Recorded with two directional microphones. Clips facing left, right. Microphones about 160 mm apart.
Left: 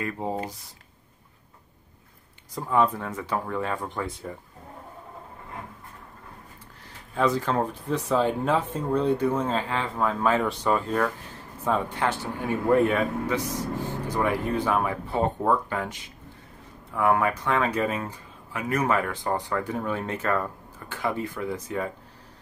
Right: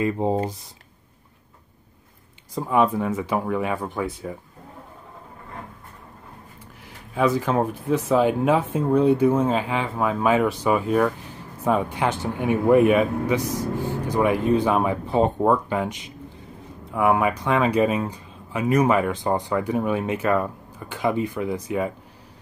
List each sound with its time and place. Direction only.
0.0 s speech: 25° right (ahead or behind)
2.5 s speech: 15° right (ahead or behind)
7.2 s speech: 10° right (ahead or behind)